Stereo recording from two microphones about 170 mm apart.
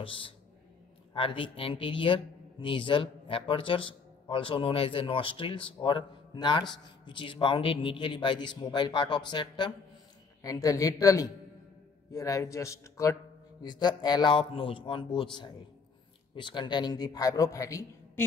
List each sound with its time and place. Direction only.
0.0 s a man's voice: 30° left (ahead or behind)